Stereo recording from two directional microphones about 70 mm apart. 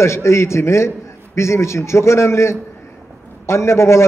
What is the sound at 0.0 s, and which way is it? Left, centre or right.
A man's voice, left.